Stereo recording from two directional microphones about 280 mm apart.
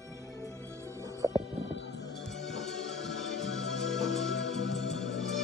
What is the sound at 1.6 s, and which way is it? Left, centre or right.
Music, left.